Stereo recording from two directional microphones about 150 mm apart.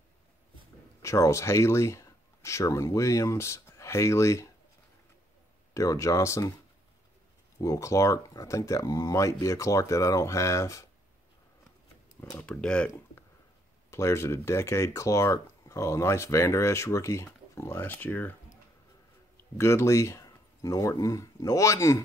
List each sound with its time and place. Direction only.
1.0 s speech: 20° left (ahead or behind)
5.8 s speech: 20° left (ahead or behind)
7.6 s speech: 20° left (ahead or behind)
12.4 s speech: 5° left (ahead or behind)
13.8 s speech: 20° left (ahead or behind)
19.5 s speech: 20° left (ahead or behind)